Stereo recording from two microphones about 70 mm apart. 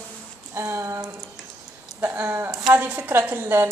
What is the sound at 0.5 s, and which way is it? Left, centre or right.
Speech, right.